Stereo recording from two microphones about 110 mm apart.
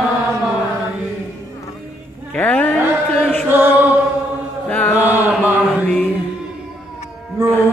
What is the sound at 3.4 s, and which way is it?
Mantra, 20° right (ahead or behind).